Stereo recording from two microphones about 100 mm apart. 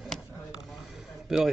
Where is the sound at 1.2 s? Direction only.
Centre (ahead or behind).